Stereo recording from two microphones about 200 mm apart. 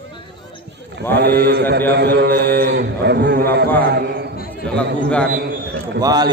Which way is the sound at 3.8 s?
50° right (ahead or behind).